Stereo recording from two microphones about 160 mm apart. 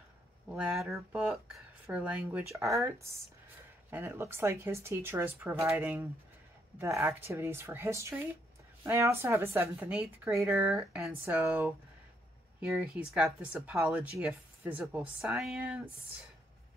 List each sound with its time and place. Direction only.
0.5 s speech: 5° right (ahead or behind)
6.8 s speech: 15° right (ahead or behind)
10.7 s speech: centre (ahead or behind)
11.1 s speech: 15° right (ahead or behind)